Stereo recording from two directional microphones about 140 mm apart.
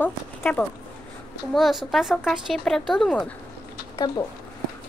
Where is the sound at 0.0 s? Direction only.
10° left (ahead or behind).